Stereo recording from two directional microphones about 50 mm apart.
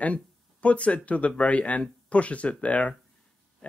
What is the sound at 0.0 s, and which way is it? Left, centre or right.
Speech, left.